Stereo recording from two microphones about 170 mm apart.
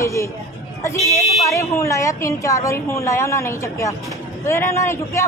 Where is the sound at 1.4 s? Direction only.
20° left (ahead or behind).